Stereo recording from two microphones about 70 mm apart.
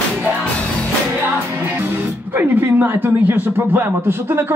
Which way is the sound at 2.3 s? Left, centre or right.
Right.